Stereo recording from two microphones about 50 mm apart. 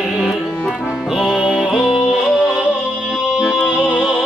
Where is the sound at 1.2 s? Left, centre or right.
Centre.